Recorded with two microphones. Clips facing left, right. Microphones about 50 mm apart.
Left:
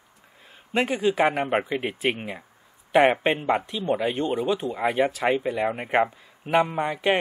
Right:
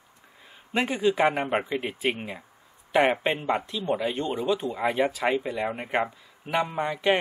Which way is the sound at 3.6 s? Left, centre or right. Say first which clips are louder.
Left 2 dB; left.